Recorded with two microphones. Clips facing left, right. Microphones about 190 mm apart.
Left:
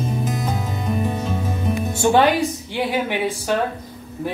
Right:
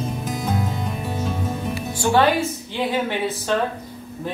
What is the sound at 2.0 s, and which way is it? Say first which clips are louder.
A man's voice: left 2 dB; 20° left (ahead or behind).